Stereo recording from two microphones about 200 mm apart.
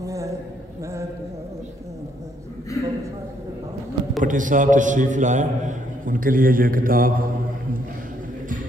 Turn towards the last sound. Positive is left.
turn(degrees=-45)  # may be behind; listen again after turning